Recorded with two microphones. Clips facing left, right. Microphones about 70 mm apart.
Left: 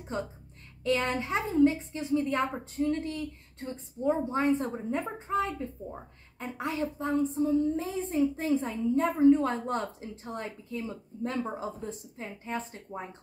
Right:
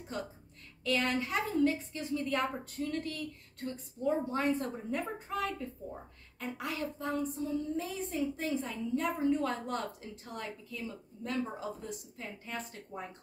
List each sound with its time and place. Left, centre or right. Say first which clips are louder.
0.1 s a woman's voice: left 5 dB; left